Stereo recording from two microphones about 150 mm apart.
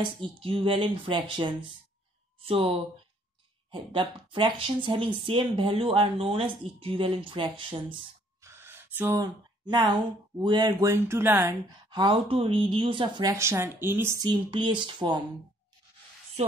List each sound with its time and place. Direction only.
0.2 s speech: 35° right (ahead or behind)
8.5 s gasp: 15° right (ahead or behind)
9.2 s speech: 30° right (ahead or behind)
11.9 s speech: 30° right (ahead or behind); by 14.1 s 15° right (ahead or behind)
14.2 s speech: 30° right (ahead or behind)
16.4 s music: 45° right (ahead or behind)